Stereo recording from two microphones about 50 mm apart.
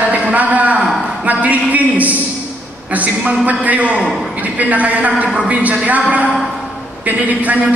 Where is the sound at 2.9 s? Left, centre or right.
Right.